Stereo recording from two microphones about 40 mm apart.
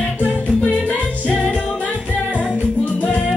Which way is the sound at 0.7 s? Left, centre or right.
Left.